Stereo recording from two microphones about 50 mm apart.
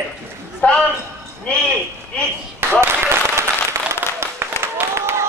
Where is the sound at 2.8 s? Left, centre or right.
Right.